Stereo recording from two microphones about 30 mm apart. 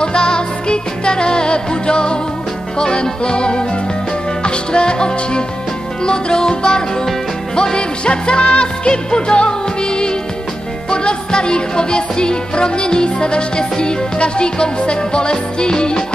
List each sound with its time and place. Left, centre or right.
0.0 s music: left